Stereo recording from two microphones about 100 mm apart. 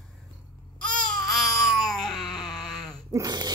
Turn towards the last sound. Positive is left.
turn(degrees=-45)  # may be behind; listen again after turning